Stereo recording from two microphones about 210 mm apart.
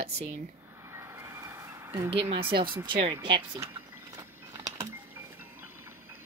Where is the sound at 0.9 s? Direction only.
15° right (ahead or behind).